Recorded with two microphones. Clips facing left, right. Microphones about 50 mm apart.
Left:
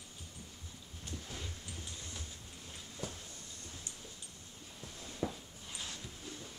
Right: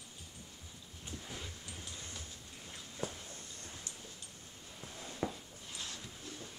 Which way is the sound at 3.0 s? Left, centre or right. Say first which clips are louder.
Right 3 dB; right.